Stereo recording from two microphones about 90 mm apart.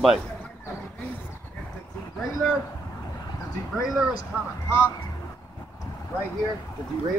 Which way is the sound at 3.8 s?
5° right (ahead or behind).